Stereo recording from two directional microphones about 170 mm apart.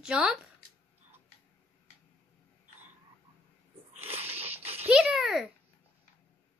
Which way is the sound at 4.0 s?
35° right (ahead or behind).